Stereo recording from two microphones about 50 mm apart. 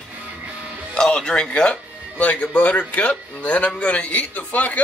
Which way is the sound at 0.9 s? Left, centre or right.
Centre.